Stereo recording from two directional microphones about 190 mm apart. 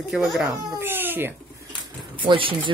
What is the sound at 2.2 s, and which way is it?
Speech, 25° right (ahead or behind).